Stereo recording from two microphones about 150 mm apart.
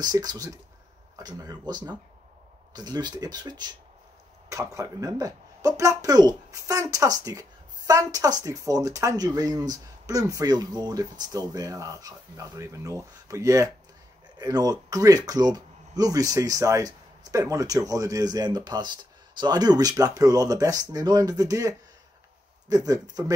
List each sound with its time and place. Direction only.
0.0 s speech: 25° right (ahead or behind)